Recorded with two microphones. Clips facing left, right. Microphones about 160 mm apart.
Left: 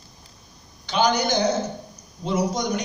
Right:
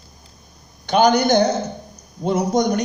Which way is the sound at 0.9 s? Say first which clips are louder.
Right 6 dB; 55° right (ahead or behind).